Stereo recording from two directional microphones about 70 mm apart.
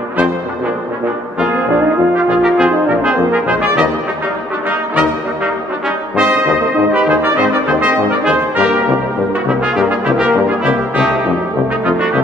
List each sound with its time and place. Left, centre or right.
2.1 s brass instrument: centre
6.1 s brass instrument: centre